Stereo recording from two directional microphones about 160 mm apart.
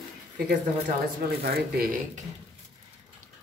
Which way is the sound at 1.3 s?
70° right (ahead or behind).